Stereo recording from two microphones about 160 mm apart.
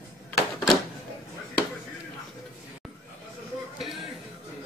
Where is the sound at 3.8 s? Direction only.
Centre (ahead or behind).